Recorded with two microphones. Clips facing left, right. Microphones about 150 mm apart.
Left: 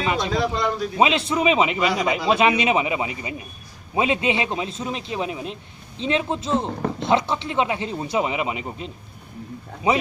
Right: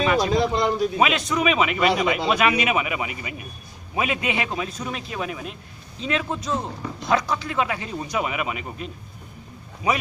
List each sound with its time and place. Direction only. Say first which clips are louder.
0.0 s a sound: right 3 dB; 20° left (ahead or behind)
0.3 s speech: right 2 dB; 20° right (ahead or behind)
0.9 s a man's voice: left 2 dB; 25° left (ahead or behind)